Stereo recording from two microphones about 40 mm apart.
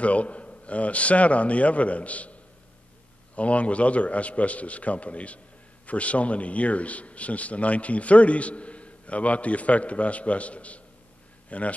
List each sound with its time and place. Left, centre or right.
0.0 s a man's voice: left
3.3 s a man's voice: left